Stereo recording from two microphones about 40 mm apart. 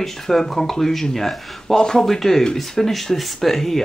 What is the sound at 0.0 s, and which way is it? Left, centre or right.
Speech, centre.